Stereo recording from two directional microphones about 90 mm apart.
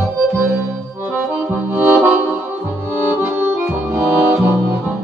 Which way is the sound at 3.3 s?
25° right (ahead or behind).